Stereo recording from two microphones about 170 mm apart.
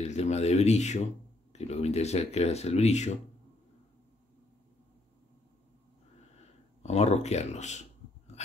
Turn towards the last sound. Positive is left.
turn(degrees=40)  # may be behind; listen again after turning